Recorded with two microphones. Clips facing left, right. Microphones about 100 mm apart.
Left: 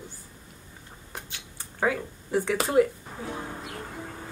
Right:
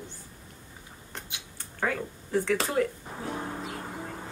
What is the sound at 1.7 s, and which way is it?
Speech, 15° left (ahead or behind).